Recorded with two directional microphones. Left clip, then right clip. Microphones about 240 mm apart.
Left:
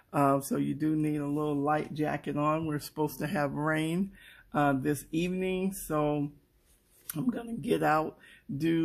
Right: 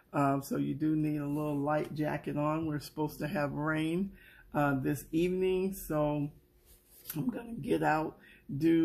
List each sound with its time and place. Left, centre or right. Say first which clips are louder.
0.1 s speech: left 4 dB; left
7.2 s speech: left 3 dB; left